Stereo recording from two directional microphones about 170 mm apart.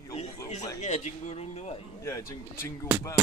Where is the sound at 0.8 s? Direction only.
45° left (ahead or behind).